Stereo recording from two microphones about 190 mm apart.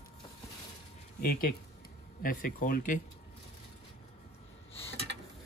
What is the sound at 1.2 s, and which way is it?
Speech, 50° left (ahead or behind).